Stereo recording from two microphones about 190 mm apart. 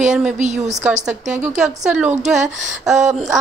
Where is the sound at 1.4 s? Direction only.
5° right (ahead or behind).